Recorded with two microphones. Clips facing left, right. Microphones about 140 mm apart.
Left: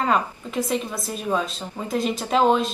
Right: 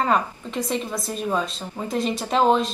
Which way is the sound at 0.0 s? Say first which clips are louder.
Even; 5° left (ahead or behind).